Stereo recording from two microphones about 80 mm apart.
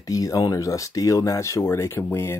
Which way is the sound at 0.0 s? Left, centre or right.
Left.